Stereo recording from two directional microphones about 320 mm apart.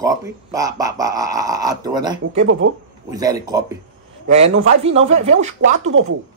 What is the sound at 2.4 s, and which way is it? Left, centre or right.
Speech, right.